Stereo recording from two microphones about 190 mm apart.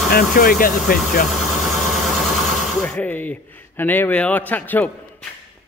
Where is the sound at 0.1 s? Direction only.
50° left (ahead or behind).